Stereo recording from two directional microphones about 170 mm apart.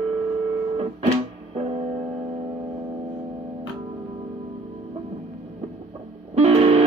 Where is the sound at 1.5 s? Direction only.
35° right (ahead or behind).